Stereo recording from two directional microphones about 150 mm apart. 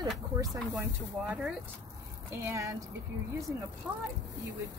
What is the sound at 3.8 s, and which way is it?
Speech, 5° right (ahead or behind).